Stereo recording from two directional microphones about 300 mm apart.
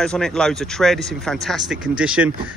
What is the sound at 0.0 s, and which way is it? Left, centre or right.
Speech, centre.